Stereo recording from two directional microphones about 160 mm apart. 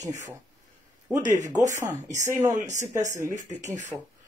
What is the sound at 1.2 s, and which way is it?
Speech, 50° right (ahead or behind).